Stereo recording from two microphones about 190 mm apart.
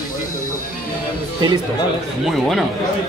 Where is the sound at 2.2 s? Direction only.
Centre (ahead or behind).